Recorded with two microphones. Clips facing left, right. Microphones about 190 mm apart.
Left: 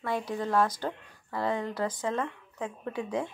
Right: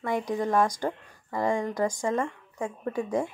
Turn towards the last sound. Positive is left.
turn(degrees=-10)  # may be behind; listen again after turning